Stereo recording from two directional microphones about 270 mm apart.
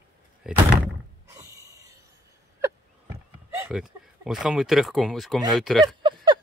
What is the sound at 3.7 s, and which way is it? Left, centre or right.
Speech, centre.